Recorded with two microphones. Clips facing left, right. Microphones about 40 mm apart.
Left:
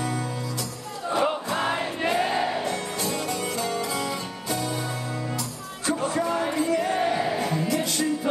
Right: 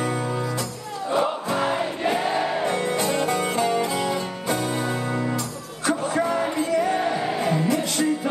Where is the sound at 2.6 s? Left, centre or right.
Right.